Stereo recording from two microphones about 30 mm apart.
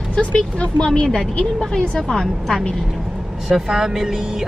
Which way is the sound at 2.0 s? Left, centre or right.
Centre.